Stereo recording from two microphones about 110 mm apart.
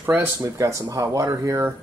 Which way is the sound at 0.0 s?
20° right (ahead or behind).